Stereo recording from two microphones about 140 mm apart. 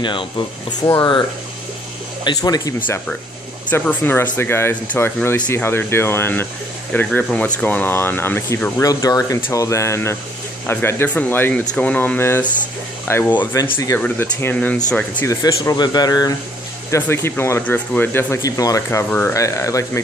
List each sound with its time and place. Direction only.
0.0 s speech: 35° left (ahead or behind)
2.2 s speech: 25° left (ahead or behind)
3.8 s speech: 15° left (ahead or behind)
8.8 s speech: 25° left (ahead or behind); by 15.2 s 10° left (ahead or behind)
15.2 s speech: 25° left (ahead or behind)
16.9 s speech: 15° left (ahead or behind)